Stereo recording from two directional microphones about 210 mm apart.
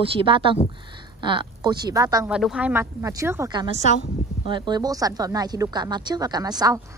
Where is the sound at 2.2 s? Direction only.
5° right (ahead or behind).